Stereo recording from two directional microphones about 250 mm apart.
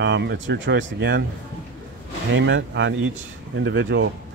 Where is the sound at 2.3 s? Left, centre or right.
Right.